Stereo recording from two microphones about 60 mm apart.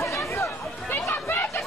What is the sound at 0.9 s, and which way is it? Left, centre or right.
Chatter, left.